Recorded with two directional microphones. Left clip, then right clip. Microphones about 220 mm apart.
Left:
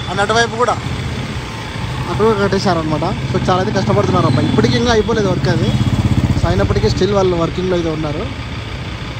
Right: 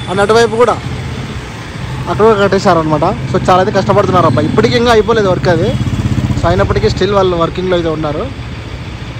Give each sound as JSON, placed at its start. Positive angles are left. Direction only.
{"t": 0.1, "sound": "speech", "side_deg": 5}
{"t": 2.0, "sound": "speech", "side_deg": 10}
{"t": 4.6, "sound": "speech", "side_deg": -5}
{"t": 5.0, "sound": "speech", "side_deg": 10}
{"t": 6.4, "sound": "speech", "side_deg": 15}
{"t": 6.7, "sound": "speech", "side_deg": 0}
{"t": 7.1, "sound": "speech", "side_deg": 15}